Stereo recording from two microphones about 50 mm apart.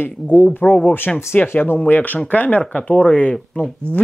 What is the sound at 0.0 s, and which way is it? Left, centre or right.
Speech, left.